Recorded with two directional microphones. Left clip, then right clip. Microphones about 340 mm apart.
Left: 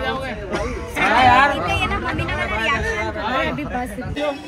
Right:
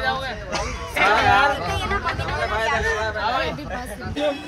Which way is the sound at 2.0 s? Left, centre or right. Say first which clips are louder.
Left 1 dB; right.